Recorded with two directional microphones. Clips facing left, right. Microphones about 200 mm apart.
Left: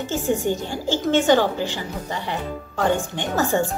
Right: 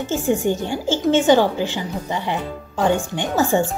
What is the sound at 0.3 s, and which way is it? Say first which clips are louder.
Speech: right 3 dB; 15° right (ahead or behind).